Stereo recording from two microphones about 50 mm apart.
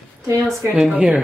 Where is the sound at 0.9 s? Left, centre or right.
Centre.